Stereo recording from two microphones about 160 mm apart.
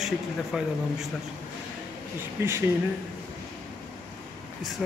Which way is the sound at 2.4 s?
15° right (ahead or behind).